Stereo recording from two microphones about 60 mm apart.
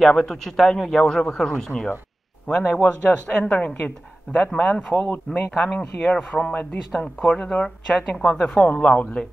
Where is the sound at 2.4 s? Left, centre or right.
Centre.